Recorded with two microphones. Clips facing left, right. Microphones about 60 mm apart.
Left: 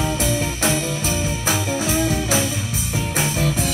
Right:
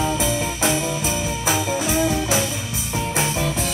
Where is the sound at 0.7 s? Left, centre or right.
Centre.